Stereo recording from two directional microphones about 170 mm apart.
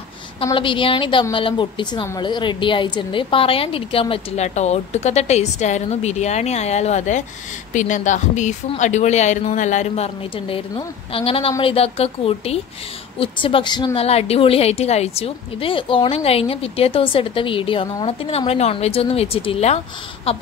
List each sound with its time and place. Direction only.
0.5 s a woman's voice: 30° left (ahead or behind)